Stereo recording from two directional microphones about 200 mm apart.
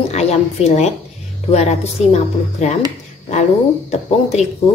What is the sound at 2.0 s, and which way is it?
Speech, 35° left (ahead or behind).